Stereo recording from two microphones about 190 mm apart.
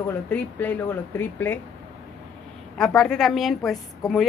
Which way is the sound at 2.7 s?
5° left (ahead or behind).